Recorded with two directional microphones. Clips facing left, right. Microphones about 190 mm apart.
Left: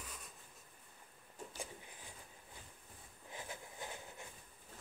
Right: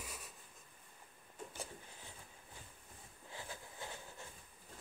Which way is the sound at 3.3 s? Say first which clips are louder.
Left 1 dB; 20° left (ahead or behind).